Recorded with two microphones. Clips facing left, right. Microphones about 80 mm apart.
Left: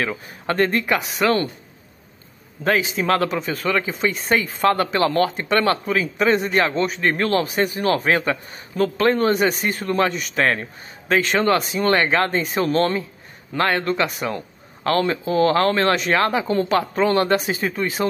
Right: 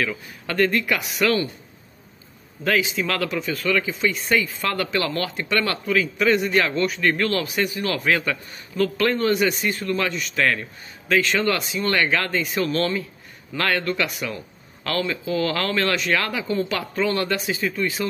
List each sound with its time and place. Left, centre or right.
0.0 s a man's voice: left
2.6 s a man's voice: left
10.1 s a man's voice: left
10.4 s a man's voice: left